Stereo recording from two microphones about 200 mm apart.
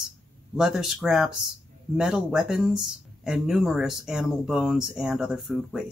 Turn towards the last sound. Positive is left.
turn(degrees=0)  # may be behind; listen again after turning